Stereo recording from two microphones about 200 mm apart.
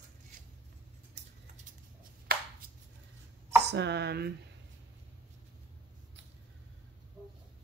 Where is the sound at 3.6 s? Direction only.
55° right (ahead or behind).